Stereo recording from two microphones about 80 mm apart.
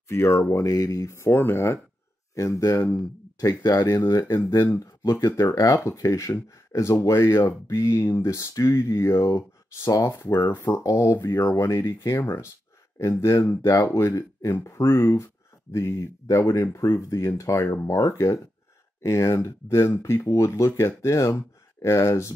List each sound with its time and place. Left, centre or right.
0.1 s speech: left
1.1 s speech: left
2.3 s speech: left
3.0 s speech: left
3.8 s speech: left
4.5 s speech: left
5.1 s speech: left